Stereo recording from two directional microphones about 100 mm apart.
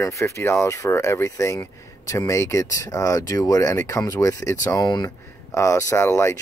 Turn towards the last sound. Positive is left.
turn(degrees=25)  # may be behind; listen again after turning